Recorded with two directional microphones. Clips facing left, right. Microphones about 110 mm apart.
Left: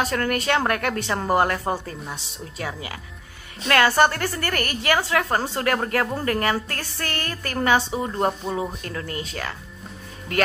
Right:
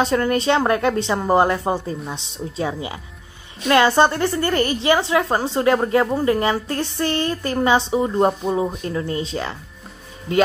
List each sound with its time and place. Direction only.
0.0 s a woman's voice: 25° right (ahead or behind)